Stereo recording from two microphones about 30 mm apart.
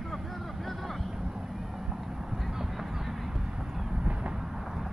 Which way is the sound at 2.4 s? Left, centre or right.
Centre.